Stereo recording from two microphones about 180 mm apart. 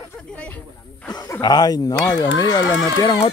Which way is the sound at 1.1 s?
20° left (ahead or behind).